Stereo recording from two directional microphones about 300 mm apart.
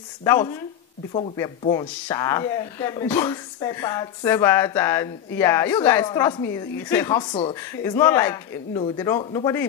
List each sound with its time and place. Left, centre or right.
0.2 s speech: centre